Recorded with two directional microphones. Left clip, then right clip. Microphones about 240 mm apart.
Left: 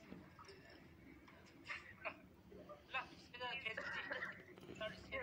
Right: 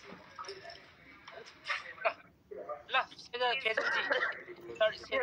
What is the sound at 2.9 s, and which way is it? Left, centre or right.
Speech, right.